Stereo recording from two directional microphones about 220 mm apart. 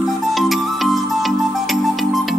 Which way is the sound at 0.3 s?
Centre (ahead or behind).